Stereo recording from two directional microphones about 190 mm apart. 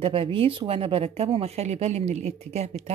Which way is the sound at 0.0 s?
30° right (ahead or behind).